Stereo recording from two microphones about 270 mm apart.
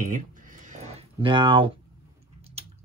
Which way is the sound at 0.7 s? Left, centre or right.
Right.